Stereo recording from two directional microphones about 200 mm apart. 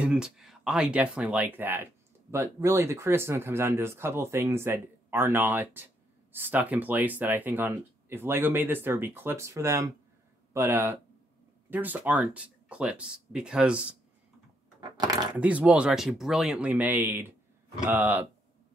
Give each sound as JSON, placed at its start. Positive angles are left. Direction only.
{"t": 0.0, "sound": "speech", "side_deg": -5}
{"t": 14.8, "sound": "a sound", "side_deg": -20}
{"t": 15.3, "sound": "speech", "side_deg": -5}